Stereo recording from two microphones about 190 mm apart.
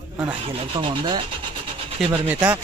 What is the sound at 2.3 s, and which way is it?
Speech, 10° right (ahead or behind).